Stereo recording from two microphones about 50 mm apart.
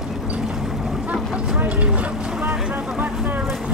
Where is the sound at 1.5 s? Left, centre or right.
Right.